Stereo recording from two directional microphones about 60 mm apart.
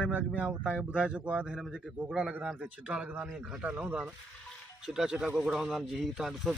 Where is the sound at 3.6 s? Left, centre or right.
Right.